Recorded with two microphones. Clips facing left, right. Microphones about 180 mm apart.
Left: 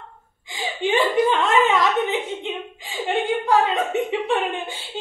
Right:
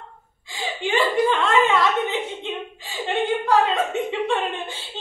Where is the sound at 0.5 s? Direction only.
20° left (ahead or behind).